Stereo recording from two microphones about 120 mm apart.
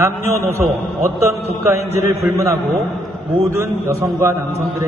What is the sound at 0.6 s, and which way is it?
Mantra, centre (ahead or behind).